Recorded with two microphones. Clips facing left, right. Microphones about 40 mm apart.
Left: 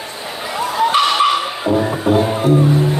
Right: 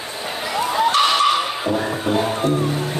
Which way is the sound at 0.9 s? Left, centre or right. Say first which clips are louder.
Left 3 dB; centre.